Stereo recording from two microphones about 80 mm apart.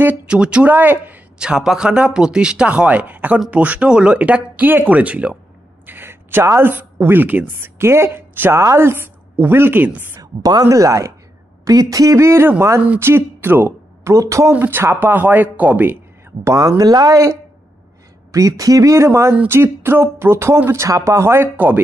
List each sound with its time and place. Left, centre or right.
0.3 s speech: centre
1.4 s speech: centre
5.9 s a woman's voice: right
10.2 s speech: right
10.6 s speech: right
14.5 s speech: right
16.4 s speech: right